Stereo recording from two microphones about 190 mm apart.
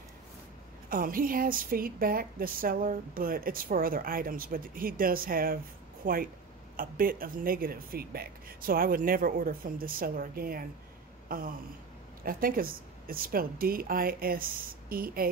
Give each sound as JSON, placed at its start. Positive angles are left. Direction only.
{"t": 0.8, "sound": "a woman's voice", "side_deg": -50}
{"t": 11.2, "sound": "a sound", "side_deg": -50}
{"t": 12.2, "sound": "a woman's voice", "side_deg": -50}